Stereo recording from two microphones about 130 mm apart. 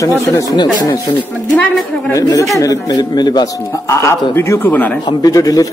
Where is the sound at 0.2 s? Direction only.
25° left (ahead or behind).